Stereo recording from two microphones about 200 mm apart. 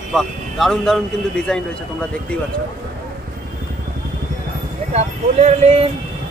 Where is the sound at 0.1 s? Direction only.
Centre (ahead or behind).